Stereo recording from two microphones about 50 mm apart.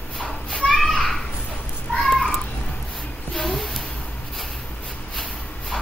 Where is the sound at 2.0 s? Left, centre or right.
Centre.